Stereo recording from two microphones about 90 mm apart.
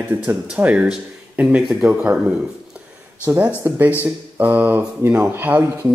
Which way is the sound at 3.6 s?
30° right (ahead or behind).